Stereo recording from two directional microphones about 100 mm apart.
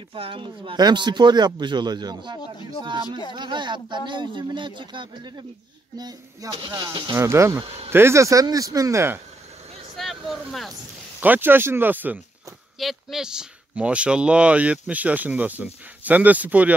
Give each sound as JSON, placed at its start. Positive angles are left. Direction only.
{"t": 0.1, "sound": "speech", "side_deg": -60}
{"t": 0.7, "sound": "speech", "side_deg": -50}
{"t": 7.2, "sound": "speech", "side_deg": -25}
{"t": 9.9, "sound": "vehicle", "side_deg": 0}
{"t": 11.1, "sound": "speech", "side_deg": -20}
{"t": 12.7, "sound": "speech", "side_deg": -5}